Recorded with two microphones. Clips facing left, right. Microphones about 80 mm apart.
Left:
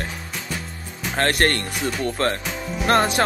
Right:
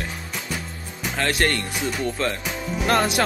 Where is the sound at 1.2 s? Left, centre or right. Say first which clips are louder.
Left 3 dB; left.